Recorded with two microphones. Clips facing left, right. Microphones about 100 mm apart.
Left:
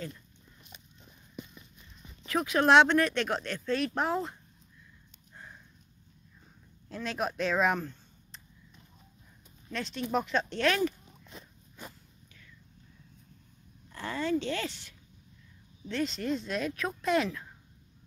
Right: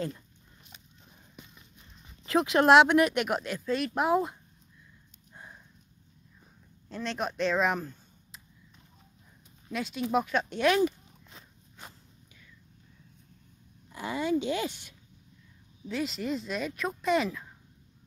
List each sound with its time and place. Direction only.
2.2 s speech: 25° right (ahead or behind)
2.6 s speech: 5° right (ahead or behind)
5.3 s horse: 15° right (ahead or behind)
6.9 s speech: centre (ahead or behind)
9.7 s speech: 10° right (ahead or behind)
13.8 s speech: 10° right (ahead or behind)
15.9 s speech: 5° right (ahead or behind)